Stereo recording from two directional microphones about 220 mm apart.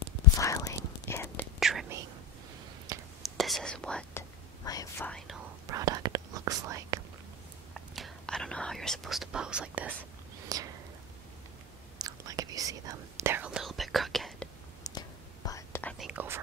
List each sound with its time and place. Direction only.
0.4 s whispering: 15° left (ahead or behind)
1.6 s whispering: centre (ahead or behind)
3.2 s whispering: centre (ahead or behind)
5.7 s whispering: 15° right (ahead or behind)
7.7 s whispering: centre (ahead or behind); by 10.7 s 15° right (ahead or behind)
12.0 s whispering: 15° right (ahead or behind); by 14.5 s centre (ahead or behind)
14.8 s whispering: 15° left (ahead or behind)
16.1 s whispering: 10° right (ahead or behind)